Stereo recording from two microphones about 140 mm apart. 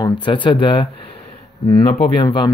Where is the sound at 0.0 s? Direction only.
35° left (ahead or behind).